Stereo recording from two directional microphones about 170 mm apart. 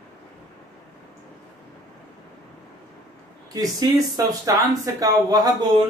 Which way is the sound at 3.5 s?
20° right (ahead or behind).